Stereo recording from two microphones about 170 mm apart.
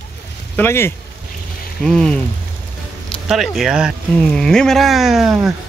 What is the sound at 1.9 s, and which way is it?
Speech, 5° left (ahead or behind).